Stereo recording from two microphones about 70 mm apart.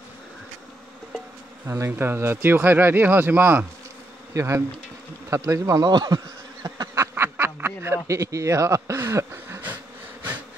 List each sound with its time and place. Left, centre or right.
1.7 s speech: right
4.3 s bee: right
5.3 s speech: right
5.9 s bee: right
7.2 s a man's voice: right
9.0 s a sound: right